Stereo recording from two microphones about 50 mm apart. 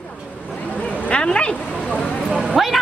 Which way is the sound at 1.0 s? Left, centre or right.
Left.